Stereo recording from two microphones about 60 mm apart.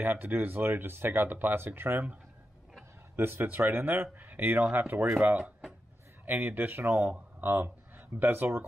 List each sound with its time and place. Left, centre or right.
0.0 s speech: right
3.2 s speech: right